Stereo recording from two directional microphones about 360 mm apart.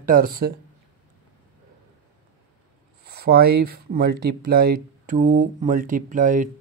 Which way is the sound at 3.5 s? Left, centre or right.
Right.